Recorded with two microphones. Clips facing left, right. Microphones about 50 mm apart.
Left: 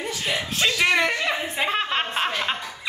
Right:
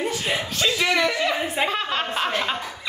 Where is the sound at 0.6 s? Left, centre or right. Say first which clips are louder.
Left 1 dB; centre.